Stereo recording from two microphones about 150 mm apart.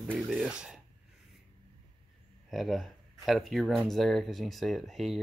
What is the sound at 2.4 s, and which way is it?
Speech, centre (ahead or behind).